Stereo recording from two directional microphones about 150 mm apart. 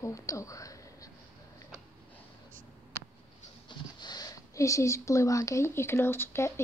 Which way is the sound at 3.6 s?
25° left (ahead or behind).